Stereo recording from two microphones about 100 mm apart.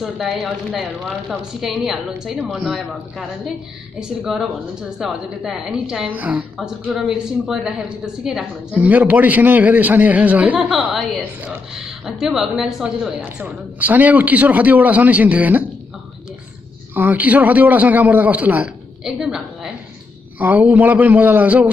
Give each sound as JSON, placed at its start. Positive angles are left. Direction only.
{"t": 0.0, "sound": "a woman's voice", "side_deg": -5}
{"t": 6.5, "sound": "a woman's voice", "side_deg": -5}
{"t": 10.8, "sound": "a woman's voice", "side_deg": -5}
{"t": 16.9, "sound": "a woman's voice", "side_deg": -20}
{"t": 20.3, "sound": "a woman's voice", "side_deg": -15}